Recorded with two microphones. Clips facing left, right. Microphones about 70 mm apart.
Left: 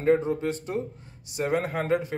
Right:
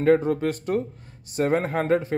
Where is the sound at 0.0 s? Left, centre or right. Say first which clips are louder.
Right 3 dB; right.